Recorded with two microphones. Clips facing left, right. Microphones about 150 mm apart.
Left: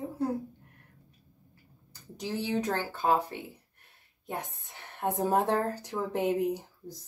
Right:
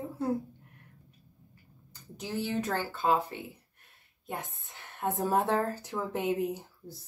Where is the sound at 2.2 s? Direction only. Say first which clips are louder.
Left 2 dB; 15° left (ahead or behind).